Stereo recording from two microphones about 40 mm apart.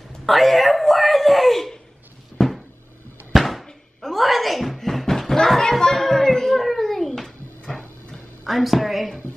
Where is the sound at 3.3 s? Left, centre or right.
Centre.